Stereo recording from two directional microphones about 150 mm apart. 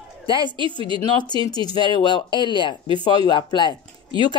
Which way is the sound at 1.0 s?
30° left (ahead or behind).